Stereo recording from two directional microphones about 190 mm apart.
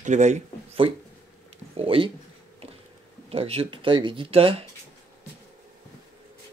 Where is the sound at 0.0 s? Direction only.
40° right (ahead or behind).